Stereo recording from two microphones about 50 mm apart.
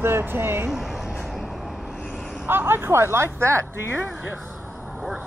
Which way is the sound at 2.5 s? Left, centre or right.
Right.